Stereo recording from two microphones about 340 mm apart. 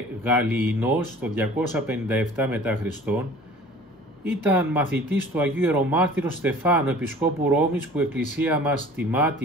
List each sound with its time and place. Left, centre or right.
0.2 s speech: centre